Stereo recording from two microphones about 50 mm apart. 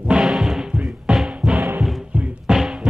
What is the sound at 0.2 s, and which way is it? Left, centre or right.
Music, centre.